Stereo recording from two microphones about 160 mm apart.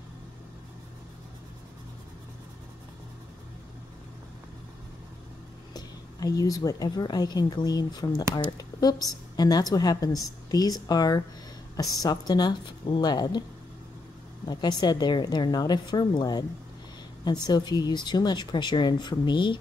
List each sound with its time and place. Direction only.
5.7 s a woman's voice: 25° left (ahead or behind)
14.5 s a woman's voice: 25° left (ahead or behind)